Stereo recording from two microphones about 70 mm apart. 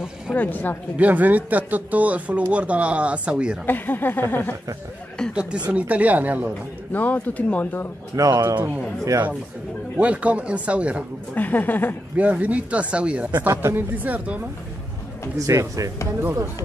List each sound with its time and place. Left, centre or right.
0.3 s speech: left
0.9 s speech: right
3.6 s speech: left
5.3 s speech: centre
6.9 s speech: left
8.2 s speech: right
9.9 s speech: centre
11.3 s speech: left
12.2 s speech: right
13.5 s speech: right
15.3 s speech: right